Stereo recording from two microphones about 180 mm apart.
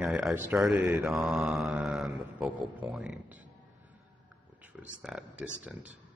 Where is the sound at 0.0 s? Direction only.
5° right (ahead or behind).